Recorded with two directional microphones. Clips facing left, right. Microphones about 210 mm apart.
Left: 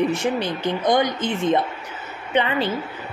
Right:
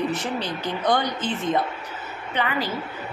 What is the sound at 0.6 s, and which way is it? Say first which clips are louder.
A woman's voice: left 4 dB; 20° left (ahead or behind).